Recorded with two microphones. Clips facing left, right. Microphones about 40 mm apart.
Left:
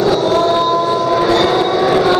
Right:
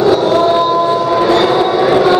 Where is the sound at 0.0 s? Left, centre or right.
Centre.